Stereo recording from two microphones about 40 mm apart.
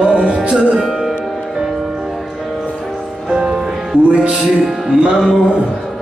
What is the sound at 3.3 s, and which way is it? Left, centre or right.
Music, right.